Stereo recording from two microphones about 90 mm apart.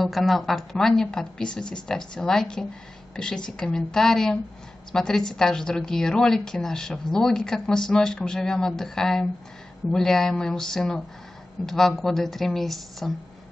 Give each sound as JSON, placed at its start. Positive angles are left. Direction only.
{"t": 0.0, "sound": "a woman's voice", "side_deg": 0}